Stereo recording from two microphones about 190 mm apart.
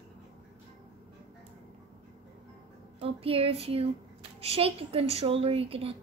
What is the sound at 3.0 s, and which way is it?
A woman's voice, 30° right (ahead or behind).